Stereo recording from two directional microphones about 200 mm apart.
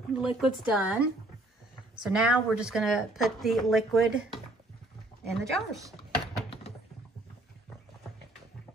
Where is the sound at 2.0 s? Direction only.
5° right (ahead or behind).